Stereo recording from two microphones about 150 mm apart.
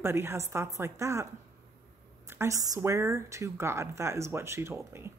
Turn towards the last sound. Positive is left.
turn(degrees=-15)  # may be behind; listen again after turning